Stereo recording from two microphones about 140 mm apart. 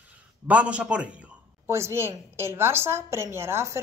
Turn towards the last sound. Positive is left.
turn(degrees=-20)  # may be behind; listen again after turning